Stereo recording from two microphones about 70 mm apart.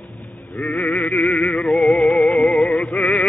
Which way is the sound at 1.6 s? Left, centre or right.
Centre.